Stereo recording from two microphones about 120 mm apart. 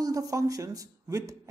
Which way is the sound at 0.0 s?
30° right (ahead or behind).